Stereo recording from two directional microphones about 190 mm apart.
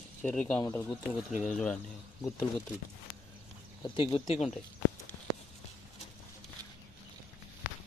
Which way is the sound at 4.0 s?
25° left (ahead or behind).